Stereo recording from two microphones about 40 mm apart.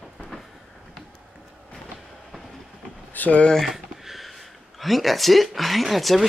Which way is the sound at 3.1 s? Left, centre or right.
Left.